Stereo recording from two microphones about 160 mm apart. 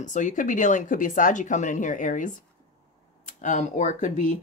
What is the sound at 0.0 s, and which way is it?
Speech, 50° left (ahead or behind).